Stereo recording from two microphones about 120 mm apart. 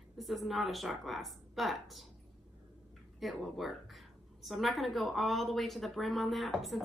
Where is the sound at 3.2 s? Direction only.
Centre (ahead or behind).